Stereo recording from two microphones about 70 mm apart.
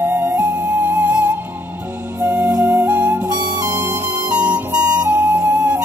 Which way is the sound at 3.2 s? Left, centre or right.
Right.